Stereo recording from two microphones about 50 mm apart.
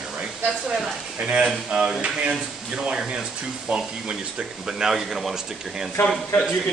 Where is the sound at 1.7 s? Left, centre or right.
Centre.